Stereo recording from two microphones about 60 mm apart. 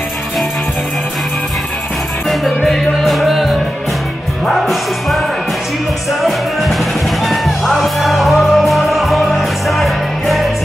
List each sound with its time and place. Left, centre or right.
2.2 s music: centre
7.2 s music: centre